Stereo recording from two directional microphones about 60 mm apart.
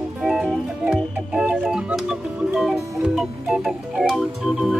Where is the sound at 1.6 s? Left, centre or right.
Centre.